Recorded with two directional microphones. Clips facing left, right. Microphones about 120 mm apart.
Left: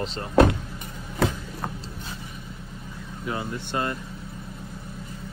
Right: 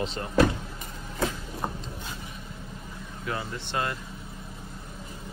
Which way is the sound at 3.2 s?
20° left (ahead or behind).